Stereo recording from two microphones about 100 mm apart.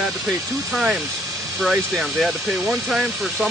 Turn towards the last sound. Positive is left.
turn(degrees=-5)  # may be behind; listen again after turning